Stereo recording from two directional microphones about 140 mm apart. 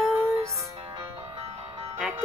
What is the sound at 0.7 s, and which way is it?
Music, 45° right (ahead or behind).